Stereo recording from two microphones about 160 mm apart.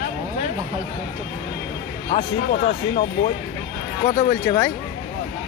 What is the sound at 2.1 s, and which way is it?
Speech, 40° left (ahead or behind).